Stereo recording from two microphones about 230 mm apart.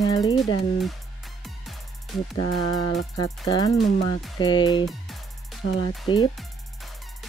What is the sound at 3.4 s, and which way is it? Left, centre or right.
Speech, centre.